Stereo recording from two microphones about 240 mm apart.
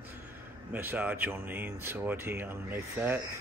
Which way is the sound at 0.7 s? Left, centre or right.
Centre.